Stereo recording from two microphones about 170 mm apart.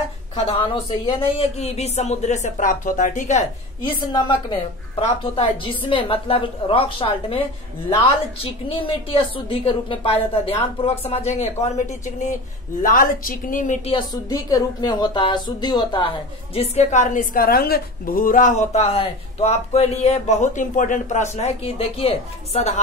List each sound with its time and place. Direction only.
0.5 s a woman's voice: 30° left (ahead or behind); by 3.4 s 45° left (ahead or behind)
4.1 s a woman's voice: 30° left (ahead or behind)
8.7 s a woman's voice: 30° left (ahead or behind); by 13.7 s 50° left (ahead or behind)
13.8 s a woman's voice: 25° left (ahead or behind)
16.5 s a woman's voice: 40° left (ahead or behind)